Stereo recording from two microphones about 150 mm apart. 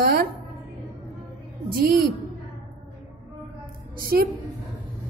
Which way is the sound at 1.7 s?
80° right.